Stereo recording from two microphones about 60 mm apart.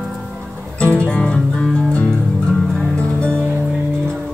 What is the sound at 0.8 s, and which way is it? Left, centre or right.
Music, centre.